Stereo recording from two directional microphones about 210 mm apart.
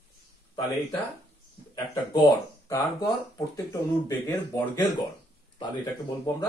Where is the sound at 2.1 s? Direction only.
20° left (ahead or behind).